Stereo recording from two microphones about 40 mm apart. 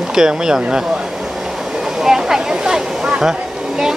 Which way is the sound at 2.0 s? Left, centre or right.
Centre.